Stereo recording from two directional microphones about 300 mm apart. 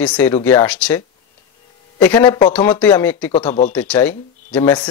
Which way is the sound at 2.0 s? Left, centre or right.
Centre.